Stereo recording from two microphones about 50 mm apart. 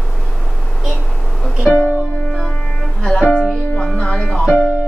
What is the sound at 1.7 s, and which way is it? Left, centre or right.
Music, left.